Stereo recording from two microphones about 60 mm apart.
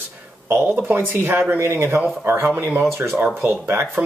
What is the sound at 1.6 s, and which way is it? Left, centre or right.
Speech, right.